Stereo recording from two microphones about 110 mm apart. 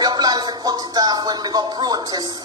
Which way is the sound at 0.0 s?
40° right (ahead or behind).